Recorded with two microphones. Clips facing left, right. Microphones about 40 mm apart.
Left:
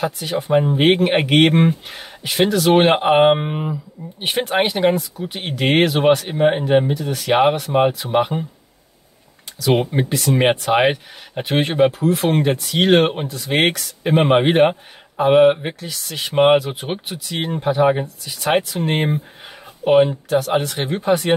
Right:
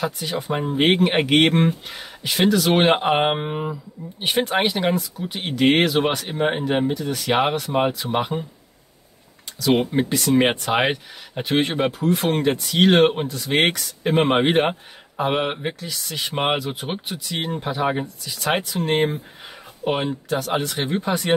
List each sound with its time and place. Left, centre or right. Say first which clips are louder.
0.0 s speech: left 3 dB; centre
9.8 s speech: left 1 dB; centre
11.4 s speech: left 1 dB; centre
11.7 s speech: left 5 dB; centre